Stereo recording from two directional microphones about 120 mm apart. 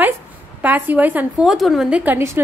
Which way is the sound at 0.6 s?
15° right (ahead or behind).